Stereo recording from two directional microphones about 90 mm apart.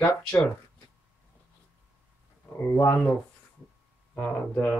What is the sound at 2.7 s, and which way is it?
Speech, 30° left (ahead or behind).